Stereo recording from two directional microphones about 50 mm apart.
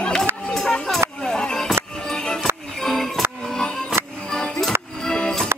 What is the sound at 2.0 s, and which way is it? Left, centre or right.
Music, centre.